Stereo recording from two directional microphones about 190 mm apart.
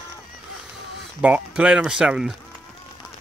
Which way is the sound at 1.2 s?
5° right (ahead or behind).